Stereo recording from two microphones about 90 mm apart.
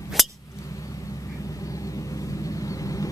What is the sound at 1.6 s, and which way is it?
Vehicle, 40° left (ahead or behind).